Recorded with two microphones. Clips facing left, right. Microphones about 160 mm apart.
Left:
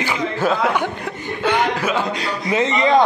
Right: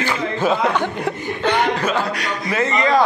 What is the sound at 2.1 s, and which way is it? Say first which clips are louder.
Speech: left 2 dB; 25° left (ahead or behind).